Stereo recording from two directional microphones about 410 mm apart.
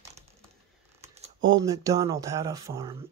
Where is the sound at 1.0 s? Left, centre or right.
Centre.